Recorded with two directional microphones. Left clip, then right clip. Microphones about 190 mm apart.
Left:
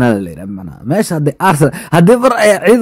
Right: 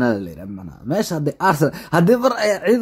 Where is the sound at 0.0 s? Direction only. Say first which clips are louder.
Left 7 dB; 40° left (ahead or behind).